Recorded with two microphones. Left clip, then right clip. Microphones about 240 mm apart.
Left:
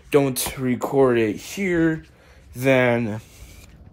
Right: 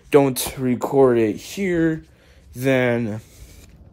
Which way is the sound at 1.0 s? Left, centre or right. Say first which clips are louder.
Right 2 dB; centre.